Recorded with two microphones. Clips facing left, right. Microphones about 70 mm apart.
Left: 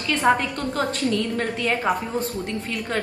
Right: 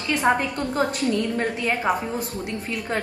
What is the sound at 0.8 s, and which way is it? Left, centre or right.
Speech, centre.